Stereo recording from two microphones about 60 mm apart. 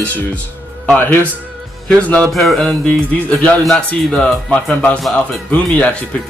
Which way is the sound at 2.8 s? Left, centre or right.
Left.